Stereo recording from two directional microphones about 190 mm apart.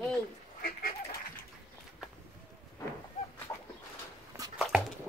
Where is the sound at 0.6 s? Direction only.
50° left (ahead or behind).